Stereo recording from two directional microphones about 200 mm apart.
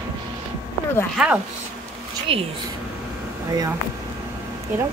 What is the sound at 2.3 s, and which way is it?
Speech, 30° right (ahead or behind).